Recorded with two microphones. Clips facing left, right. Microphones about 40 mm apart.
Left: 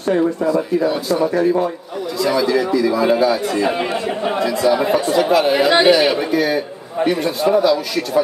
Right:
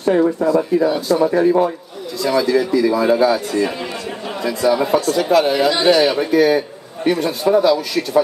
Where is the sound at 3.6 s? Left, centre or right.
Left.